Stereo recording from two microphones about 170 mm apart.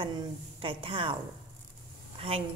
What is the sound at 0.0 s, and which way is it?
Speech, 30° right (ahead or behind).